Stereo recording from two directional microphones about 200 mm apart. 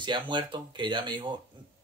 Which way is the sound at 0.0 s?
25° right (ahead or behind).